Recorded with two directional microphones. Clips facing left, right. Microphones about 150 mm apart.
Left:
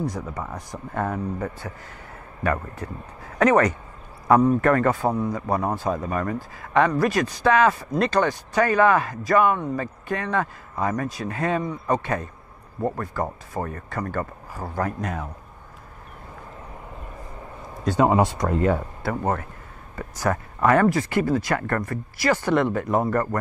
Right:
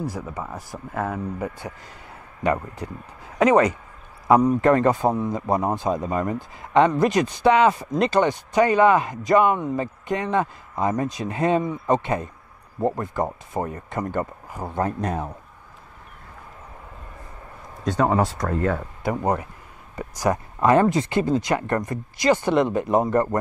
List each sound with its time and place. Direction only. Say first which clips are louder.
0.0 s speech: left 1 dB; 5° right (ahead or behind)
2.4 s speech: right 2 dB; 20° right (ahead or behind)
17.8 s speech: left 2 dB; 15° left (ahead or behind)
19.0 s speech: right 2 dB; 15° right (ahead or behind)